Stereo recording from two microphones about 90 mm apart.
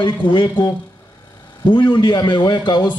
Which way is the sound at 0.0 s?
60° left (ahead or behind).